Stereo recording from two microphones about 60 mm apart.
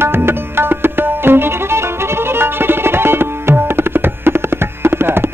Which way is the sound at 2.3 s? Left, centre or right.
Right.